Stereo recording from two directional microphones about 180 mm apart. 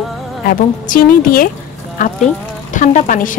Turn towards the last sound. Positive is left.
turn(degrees=45)  # may be behind; listen again after turning